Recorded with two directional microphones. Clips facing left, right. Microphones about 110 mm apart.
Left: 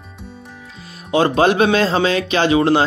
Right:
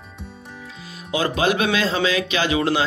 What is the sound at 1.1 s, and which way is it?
A man's voice, 40° left (ahead or behind).